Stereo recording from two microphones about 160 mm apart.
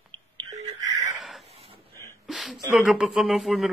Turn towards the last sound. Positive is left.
turn(degrees=0)  # may be behind; listen again after turning